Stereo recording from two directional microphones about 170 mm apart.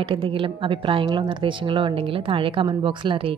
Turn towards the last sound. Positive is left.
turn(degrees=-30)  # may be behind; listen again after turning